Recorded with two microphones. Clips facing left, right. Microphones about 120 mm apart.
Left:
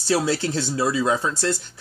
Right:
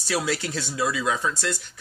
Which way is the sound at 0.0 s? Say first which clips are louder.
Left 5 dB; 30° left (ahead or behind).